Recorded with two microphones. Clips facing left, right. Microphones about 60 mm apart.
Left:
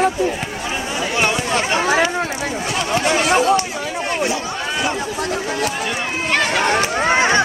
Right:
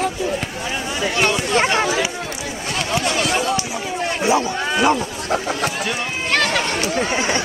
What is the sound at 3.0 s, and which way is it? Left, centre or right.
Speech, left.